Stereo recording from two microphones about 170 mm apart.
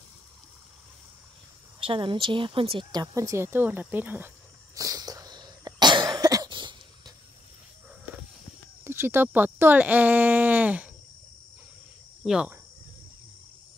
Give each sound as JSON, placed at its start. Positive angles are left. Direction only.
{"t": 1.8, "sound": "a woman's voice", "side_deg": -30}
{"t": 4.7, "sound": "cough", "side_deg": -20}
{"t": 8.8, "sound": "speech", "side_deg": -15}
{"t": 12.2, "sound": "speech", "side_deg": -5}